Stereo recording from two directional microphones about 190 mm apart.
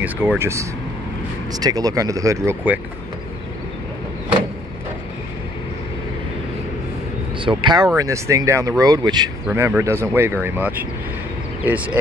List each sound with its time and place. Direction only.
0.0 s speech: 10° right (ahead or behind)
7.4 s speech: 25° right (ahead or behind); by 12.0 s 5° right (ahead or behind)